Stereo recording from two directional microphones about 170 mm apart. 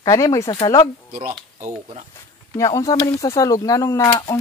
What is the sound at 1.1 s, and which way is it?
Speech, 50° right (ahead or behind).